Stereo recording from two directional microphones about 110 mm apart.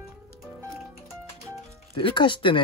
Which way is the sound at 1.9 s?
50° left (ahead or behind).